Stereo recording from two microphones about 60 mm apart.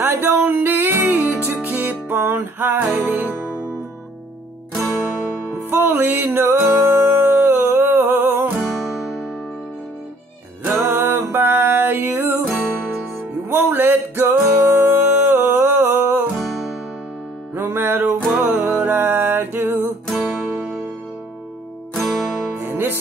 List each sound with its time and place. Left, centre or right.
0.0 s music: right
5.7 s music: right
10.7 s music: right
17.6 s music: right
20.1 s music: centre
21.9 s music: centre
22.6 s music: right